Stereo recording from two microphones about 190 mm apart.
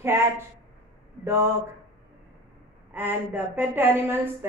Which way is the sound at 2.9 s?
10° right (ahead or behind).